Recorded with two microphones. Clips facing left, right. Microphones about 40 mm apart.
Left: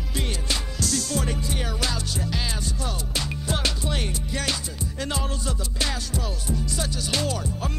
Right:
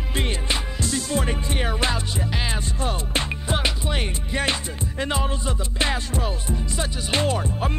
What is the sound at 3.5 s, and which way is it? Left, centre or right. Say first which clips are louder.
Music: right 3 dB; right.